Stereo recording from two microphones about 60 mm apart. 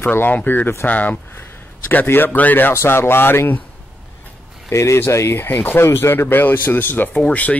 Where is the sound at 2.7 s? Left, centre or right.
Left.